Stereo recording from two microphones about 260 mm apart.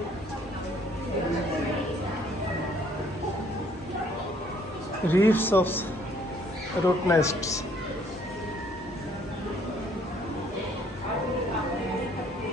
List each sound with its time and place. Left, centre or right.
5.0 s a man's voice: centre